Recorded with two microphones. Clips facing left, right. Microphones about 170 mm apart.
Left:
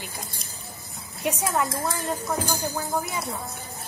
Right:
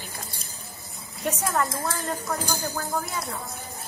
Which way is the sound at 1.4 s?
10° left (ahead or behind).